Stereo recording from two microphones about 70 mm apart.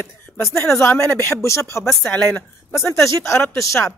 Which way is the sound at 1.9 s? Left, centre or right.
Centre.